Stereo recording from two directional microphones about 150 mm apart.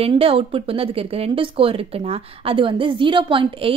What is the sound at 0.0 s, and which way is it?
Speech, 40° right (ahead or behind).